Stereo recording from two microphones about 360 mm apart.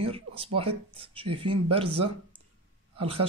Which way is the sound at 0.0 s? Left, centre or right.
Centre.